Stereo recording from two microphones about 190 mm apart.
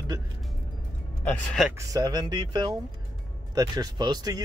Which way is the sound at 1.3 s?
Centre (ahead or behind).